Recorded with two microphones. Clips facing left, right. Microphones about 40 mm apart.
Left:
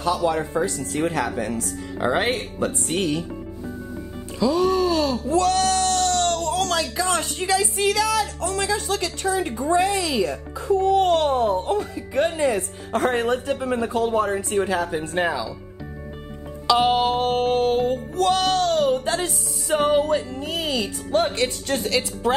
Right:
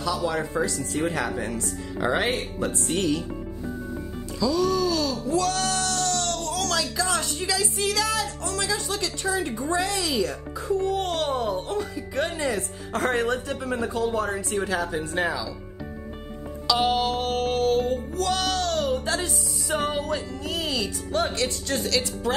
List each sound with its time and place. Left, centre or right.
0.0 s speech: left
1.4 s speech: left
2.2 s speech: left
4.4 s a sound: left
8.4 s speech: left
9.2 s speech: left
10.2 s music: left
10.8 s speech: left
11.7 s speech: left
13.7 s speech: left
14.6 s speech: centre
16.6 s music: left